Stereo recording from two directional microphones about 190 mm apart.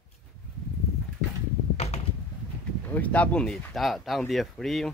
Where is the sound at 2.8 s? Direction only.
10° left (ahead or behind).